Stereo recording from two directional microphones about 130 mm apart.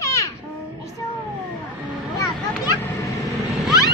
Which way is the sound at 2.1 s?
25° left (ahead or behind).